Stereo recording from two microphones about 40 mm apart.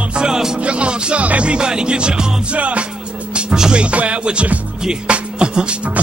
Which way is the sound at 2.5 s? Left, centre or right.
Right.